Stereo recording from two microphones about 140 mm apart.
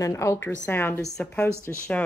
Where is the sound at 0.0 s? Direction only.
20° left (ahead or behind).